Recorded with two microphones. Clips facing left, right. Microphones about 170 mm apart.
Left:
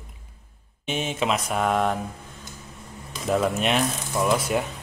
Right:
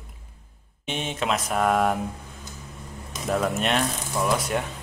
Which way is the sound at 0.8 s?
5° left (ahead or behind).